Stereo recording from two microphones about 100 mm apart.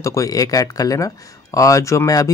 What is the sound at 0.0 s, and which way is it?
Speech, 35° left (ahead or behind).